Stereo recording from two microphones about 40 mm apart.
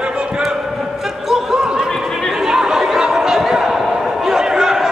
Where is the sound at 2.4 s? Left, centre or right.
Centre.